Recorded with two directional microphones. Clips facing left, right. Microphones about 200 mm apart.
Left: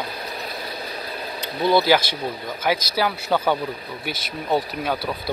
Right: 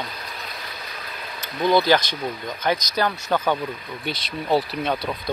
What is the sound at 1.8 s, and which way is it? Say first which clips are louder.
Speech: left 1 dB; 10° left (ahead or behind).